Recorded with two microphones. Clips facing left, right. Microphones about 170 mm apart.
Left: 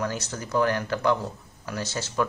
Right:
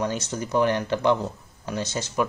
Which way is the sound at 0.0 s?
20° right (ahead or behind).